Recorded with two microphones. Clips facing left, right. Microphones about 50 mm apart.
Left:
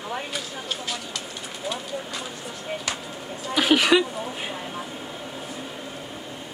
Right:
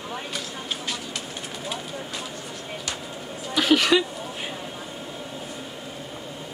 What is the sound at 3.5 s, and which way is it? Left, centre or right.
A woman's voice, centre.